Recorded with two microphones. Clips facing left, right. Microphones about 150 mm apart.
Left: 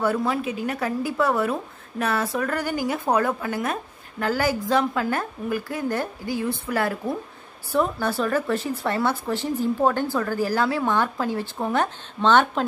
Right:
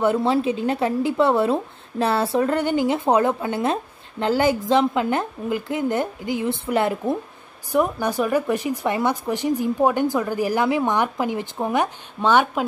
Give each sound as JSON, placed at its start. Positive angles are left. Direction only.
{"t": 0.0, "sound": "speech", "side_deg": -25}